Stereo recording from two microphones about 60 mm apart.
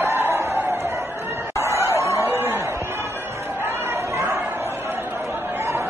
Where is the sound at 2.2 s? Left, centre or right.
Right.